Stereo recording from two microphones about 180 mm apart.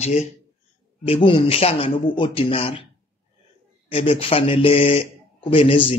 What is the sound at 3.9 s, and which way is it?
Speech, 30° left (ahead or behind).